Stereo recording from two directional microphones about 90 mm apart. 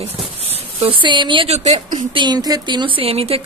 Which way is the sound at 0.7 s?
75° right (ahead or behind).